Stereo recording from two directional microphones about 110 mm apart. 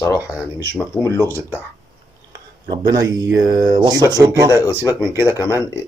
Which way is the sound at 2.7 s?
35° right (ahead or behind).